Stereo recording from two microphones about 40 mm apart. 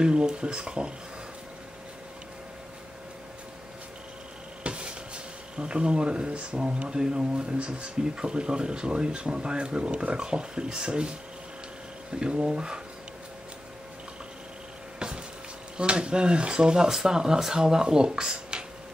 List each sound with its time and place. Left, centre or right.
0.0 s speech: right
4.6 s speech: right
15.0 s a sound: centre
15.8 s speech: right